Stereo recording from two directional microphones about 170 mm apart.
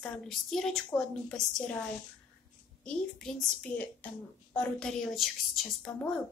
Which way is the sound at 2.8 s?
5° left (ahead or behind).